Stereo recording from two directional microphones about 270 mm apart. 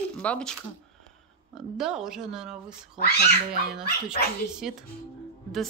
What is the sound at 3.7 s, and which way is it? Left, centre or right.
A woman's voice, centre.